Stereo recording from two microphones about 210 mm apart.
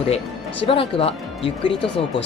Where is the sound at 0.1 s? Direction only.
25° left (ahead or behind).